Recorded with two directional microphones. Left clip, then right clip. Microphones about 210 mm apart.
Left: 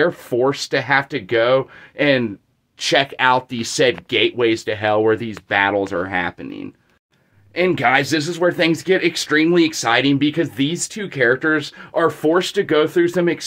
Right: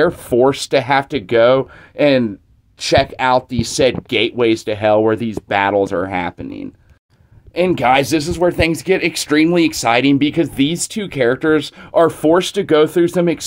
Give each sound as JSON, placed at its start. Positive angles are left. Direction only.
{"t": 0.0, "sound": "speech", "side_deg": -40}